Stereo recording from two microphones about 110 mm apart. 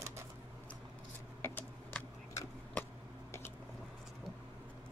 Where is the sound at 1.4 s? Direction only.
20° left (ahead or behind).